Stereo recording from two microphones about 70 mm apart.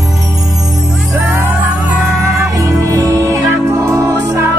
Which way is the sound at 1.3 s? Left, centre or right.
Right.